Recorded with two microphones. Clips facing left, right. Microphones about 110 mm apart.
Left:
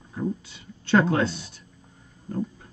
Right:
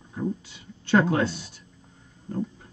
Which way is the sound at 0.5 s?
15° right (ahead or behind).